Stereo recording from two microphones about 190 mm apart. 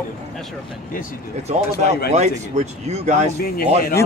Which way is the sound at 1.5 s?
40° right (ahead or behind).